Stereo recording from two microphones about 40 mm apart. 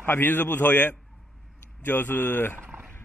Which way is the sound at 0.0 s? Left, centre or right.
Left.